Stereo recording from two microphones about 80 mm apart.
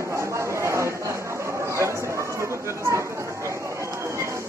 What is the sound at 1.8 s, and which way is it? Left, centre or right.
Chatter, right.